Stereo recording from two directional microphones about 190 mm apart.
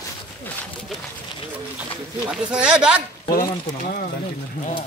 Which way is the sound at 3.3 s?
50° left (ahead or behind).